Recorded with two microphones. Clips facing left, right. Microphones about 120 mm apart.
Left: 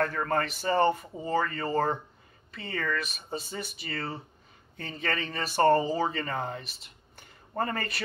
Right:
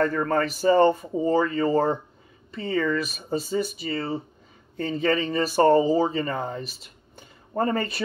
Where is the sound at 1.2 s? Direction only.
25° right (ahead or behind).